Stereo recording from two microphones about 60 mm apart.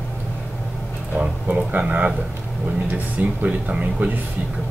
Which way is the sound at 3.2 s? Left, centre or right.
Right.